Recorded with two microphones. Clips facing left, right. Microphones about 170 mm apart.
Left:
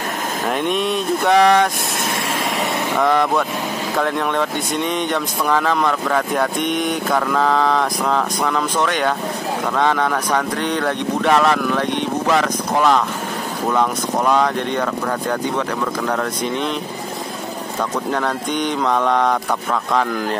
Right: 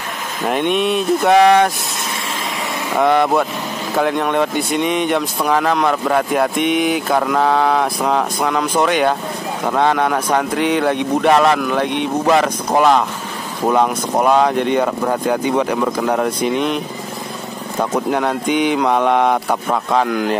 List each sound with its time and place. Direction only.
0.5 s speech: centre (ahead or behind)
3.0 s speech: 5° right (ahead or behind)
18.1 s speech: 5° right (ahead or behind)
20.1 s speech: 5° right (ahead or behind)